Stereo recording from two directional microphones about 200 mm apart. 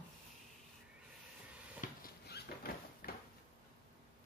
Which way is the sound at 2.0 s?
50° left (ahead or behind).